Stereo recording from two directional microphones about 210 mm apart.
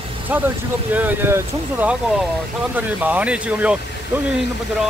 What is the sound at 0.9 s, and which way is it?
Speech, 10° right (ahead or behind).